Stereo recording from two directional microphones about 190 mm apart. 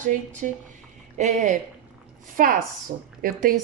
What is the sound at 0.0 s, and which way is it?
A woman's voice, 40° right (ahead or behind).